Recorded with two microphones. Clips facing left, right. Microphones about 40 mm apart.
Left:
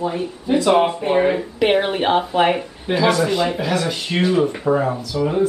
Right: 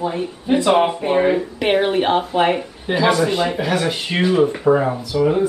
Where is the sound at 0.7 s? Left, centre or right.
Centre.